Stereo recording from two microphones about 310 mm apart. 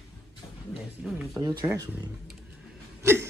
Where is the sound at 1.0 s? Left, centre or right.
Centre.